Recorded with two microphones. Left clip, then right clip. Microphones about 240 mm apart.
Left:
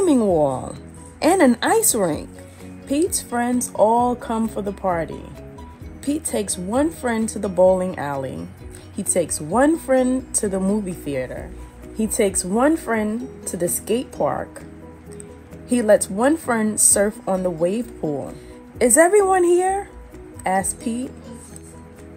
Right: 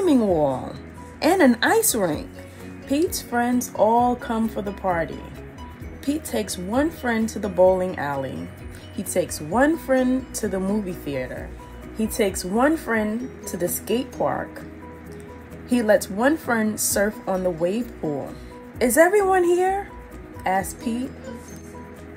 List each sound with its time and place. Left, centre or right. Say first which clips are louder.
0.0 s music: left 2 dB; left
1.2 s a woman's voice: left 1 dB; left
15.7 s speech: left 3 dB; left